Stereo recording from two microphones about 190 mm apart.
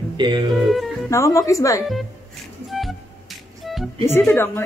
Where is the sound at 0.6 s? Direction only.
Centre (ahead or behind).